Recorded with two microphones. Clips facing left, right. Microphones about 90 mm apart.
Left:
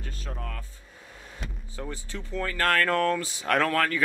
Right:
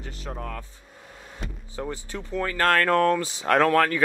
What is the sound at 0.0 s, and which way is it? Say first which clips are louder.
Speech: right 4 dB; 20° right (ahead or behind).